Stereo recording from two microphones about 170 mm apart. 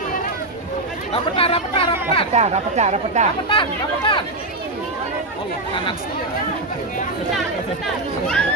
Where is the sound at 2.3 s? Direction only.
40° right (ahead or behind).